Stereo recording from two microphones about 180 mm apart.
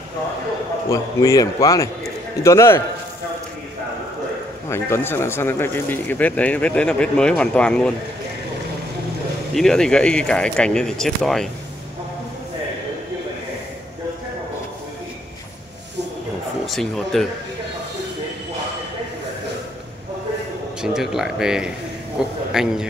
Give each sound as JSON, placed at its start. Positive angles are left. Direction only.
{"t": 0.8, "sound": "a man's voice", "side_deg": 15}
{"t": 4.6, "sound": "speech", "side_deg": 15}
{"t": 9.5, "sound": "speech", "side_deg": 0}
{"t": 16.6, "sound": "speech", "side_deg": 0}
{"t": 20.8, "sound": "speech", "side_deg": 0}